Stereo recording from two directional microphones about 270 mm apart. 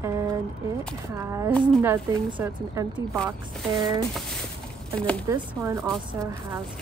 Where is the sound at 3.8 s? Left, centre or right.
Centre.